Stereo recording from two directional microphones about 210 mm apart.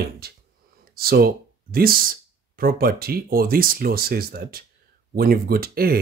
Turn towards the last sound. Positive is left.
turn(degrees=-45)  # may be behind; listen again after turning